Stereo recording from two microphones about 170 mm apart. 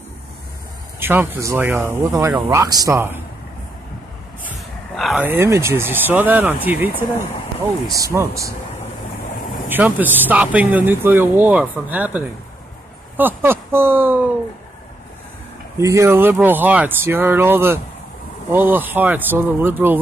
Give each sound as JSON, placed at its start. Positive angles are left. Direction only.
{"t": 0.9, "sound": "speech", "side_deg": -10}
{"t": 4.9, "sound": "a sound", "side_deg": 0}
{"t": 5.2, "sound": "speech", "side_deg": -15}
{"t": 8.0, "sound": "speech", "side_deg": -15}
{"t": 9.7, "sound": "speech", "side_deg": -10}
{"t": 15.8, "sound": "speech", "side_deg": -15}